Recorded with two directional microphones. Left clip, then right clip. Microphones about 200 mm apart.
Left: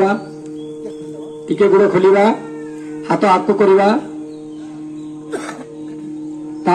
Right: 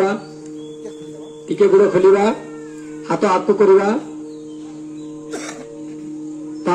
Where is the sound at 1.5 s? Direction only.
10° left (ahead or behind).